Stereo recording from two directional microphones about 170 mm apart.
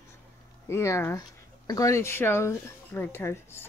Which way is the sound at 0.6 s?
15° left (ahead or behind).